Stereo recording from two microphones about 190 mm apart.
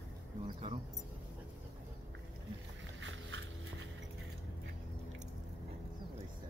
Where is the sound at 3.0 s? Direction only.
80° right.